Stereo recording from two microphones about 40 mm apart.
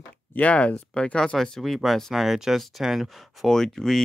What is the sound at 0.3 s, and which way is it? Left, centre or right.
Speech, left.